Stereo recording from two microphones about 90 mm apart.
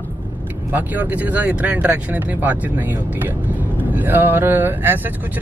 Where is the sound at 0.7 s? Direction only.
20° right (ahead or behind).